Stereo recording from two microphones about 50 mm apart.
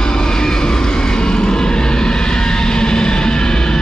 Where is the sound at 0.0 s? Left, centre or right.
Centre.